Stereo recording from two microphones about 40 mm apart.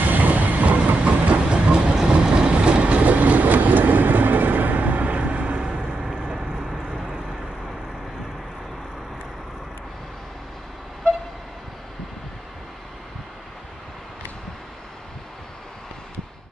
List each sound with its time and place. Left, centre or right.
0.1 s train: right
1.0 s train: right
5.6 s vehicle: centre